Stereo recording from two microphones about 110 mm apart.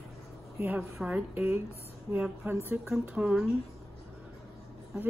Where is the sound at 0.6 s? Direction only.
15° right (ahead or behind).